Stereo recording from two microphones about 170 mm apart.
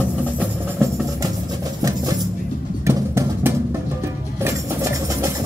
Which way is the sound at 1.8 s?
20° right (ahead or behind).